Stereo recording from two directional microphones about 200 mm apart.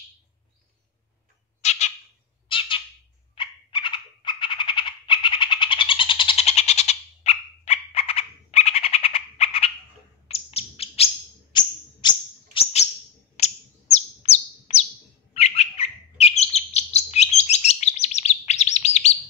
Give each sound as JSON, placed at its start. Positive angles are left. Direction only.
{"t": 1.6, "sound": "cat", "side_deg": 35}
{"t": 2.4, "sound": "squawk", "side_deg": 25}
{"t": 3.3, "sound": "frog", "side_deg": 25}
{"t": 10.2, "sound": "bird", "side_deg": 30}
{"t": 11.5, "sound": "a sound", "side_deg": 20}
{"t": 12.0, "sound": "whistle", "side_deg": 20}
{"t": 13.4, "sound": "bird", "side_deg": 35}